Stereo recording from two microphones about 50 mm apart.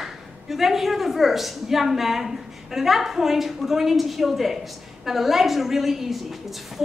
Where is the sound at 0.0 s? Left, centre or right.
Centre.